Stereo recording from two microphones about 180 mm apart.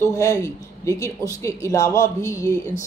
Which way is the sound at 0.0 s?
15° left (ahead or behind).